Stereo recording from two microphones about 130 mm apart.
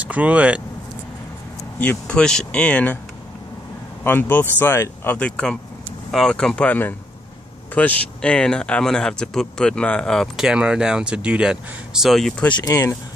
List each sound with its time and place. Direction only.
0.0 s speech: 10° right (ahead or behind)
1.8 s speech: 10° left (ahead or behind)
4.0 s speech: 15° left (ahead or behind)
5.1 s speech: 5° left (ahead or behind)